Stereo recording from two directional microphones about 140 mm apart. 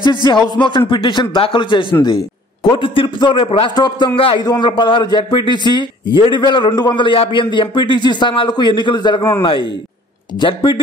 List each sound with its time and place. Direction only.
0.0 s a man's voice: 35° left (ahead or behind)